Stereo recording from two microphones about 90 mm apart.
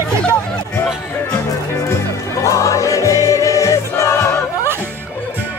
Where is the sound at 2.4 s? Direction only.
35° left (ahead or behind).